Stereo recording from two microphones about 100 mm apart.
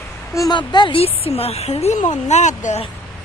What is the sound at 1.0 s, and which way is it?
Speech, 80° left.